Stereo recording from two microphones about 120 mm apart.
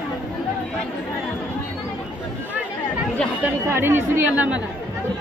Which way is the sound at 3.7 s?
20° right (ahead or behind).